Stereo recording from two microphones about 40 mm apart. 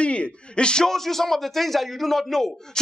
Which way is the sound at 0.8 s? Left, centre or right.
Centre.